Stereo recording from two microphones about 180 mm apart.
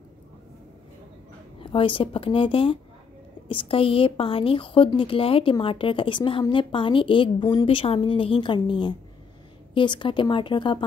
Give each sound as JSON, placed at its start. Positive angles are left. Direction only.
{"t": 1.6, "sound": "speech", "side_deg": 30}